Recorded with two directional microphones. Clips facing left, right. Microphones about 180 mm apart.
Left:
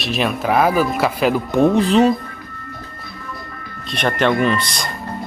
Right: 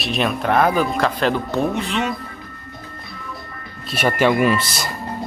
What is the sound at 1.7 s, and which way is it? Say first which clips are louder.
Speech: left 9 dB; 35° left (ahead or behind).